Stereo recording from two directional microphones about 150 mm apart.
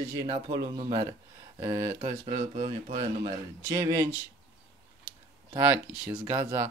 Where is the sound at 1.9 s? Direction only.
45° right (ahead or behind).